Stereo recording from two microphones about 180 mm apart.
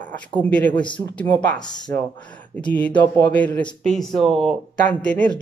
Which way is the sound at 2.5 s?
10° left (ahead or behind).